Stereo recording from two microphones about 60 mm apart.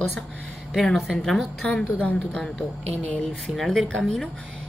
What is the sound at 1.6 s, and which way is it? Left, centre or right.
Speech, centre.